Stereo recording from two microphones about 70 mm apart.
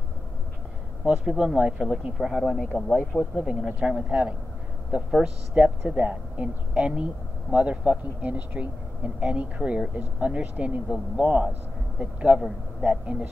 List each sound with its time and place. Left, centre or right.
1.0 s speech: centre
2.3 s speech: centre
3.4 s speech: centre; by 13.3 s right